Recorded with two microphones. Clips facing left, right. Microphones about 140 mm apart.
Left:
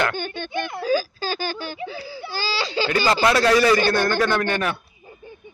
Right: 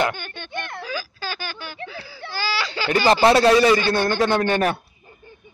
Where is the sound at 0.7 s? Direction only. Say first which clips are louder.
Left 9 dB; 40° left (ahead or behind).